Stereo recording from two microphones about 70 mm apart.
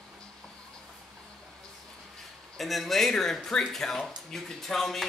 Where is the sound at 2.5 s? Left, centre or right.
Centre.